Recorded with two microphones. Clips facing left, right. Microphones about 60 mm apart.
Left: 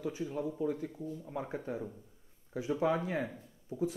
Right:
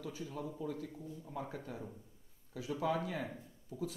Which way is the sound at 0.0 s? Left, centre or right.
Left.